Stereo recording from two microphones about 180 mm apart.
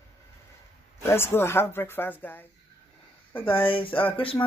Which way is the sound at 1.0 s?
15° left (ahead or behind).